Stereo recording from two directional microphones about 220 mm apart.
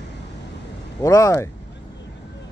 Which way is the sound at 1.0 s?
15° left (ahead or behind).